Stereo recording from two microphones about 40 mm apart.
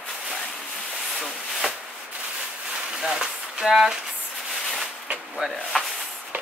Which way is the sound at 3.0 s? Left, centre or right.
Centre.